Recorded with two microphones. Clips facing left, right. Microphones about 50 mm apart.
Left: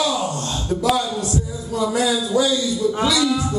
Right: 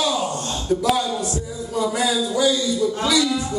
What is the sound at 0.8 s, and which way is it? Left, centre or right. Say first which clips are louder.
A man's voice: left 4 dB; centre.